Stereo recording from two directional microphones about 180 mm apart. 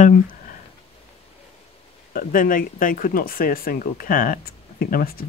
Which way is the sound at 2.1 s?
50° left (ahead or behind).